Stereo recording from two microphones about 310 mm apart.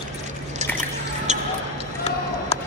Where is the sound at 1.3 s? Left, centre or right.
Right.